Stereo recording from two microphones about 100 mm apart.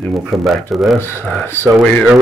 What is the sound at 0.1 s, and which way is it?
Speech, centre (ahead or behind).